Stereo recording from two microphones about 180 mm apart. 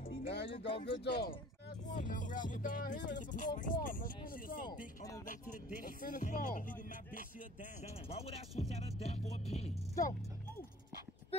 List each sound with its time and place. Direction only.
0.0 s music: 30° left (ahead or behind)
0.3 s speech: 65° left (ahead or behind)
1.9 s music: 45° left (ahead or behind)
4.6 s speech: 20° left (ahead or behind)
5.9 s music: 50° left (ahead or behind)
8.1 s music: 35° left (ahead or behind)